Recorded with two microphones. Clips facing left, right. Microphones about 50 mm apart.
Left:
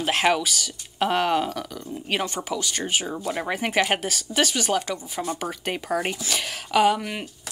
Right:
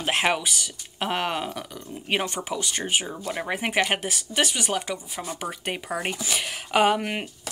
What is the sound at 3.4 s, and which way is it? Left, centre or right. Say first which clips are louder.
Speech: left 1 dB; centre.